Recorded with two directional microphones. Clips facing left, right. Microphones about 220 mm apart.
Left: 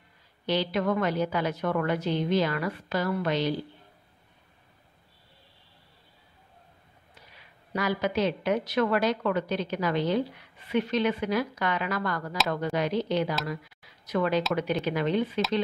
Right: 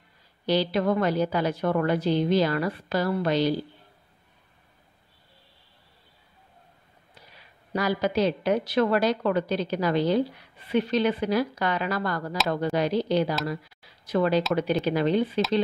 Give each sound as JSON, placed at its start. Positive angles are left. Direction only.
{"t": 0.5, "sound": "a woman's voice", "side_deg": -35}
{"t": 7.7, "sound": "a woman's voice", "side_deg": -35}